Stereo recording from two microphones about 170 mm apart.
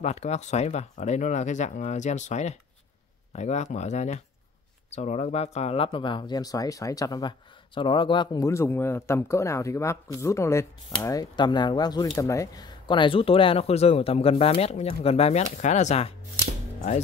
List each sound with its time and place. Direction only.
0.0 s speech: 40° left (ahead or behind)